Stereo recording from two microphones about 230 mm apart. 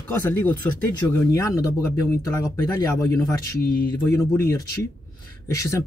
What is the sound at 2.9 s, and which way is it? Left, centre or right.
Speech, centre.